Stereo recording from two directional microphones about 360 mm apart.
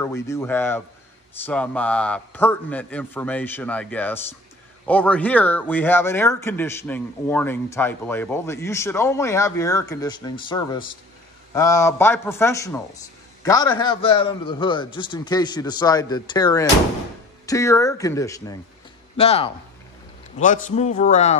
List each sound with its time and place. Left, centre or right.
0.0 s a man's voice: centre